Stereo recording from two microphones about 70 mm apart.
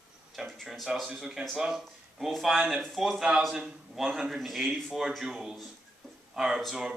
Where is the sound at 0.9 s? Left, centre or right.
Centre.